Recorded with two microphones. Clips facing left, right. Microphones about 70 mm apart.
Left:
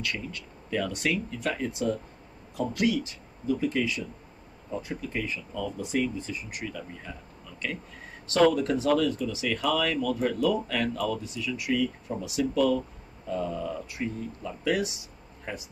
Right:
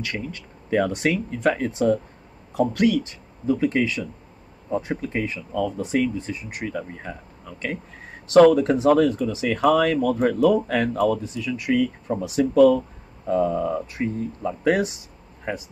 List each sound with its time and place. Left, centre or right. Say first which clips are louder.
0.1 s speech: right 5 dB; right
9.7 s speech: right 9 dB; right